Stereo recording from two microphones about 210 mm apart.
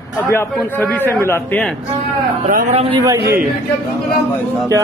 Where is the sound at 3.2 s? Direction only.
45° right (ahead or behind).